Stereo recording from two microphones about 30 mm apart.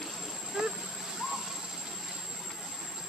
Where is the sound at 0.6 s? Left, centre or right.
Right.